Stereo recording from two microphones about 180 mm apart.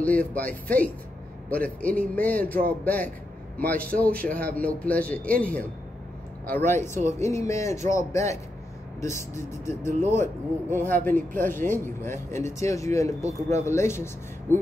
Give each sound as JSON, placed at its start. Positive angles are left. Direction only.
{"t": 0.0, "sound": "a man's voice", "side_deg": 10}